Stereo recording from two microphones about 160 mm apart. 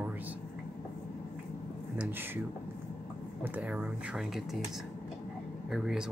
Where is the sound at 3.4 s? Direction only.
10° right (ahead or behind).